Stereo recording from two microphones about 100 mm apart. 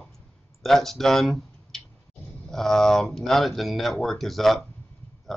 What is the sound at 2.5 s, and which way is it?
Speech, 5° left (ahead or behind).